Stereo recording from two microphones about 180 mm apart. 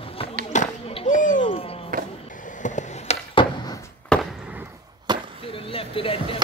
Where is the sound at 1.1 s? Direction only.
45° left (ahead or behind).